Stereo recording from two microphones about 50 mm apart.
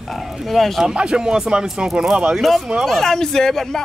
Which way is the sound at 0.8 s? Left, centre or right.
Centre.